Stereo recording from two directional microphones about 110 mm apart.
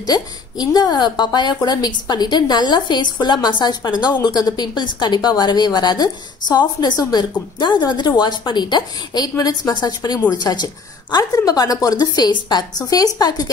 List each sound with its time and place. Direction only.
0.0 s a woman's voice: 35° left (ahead or behind)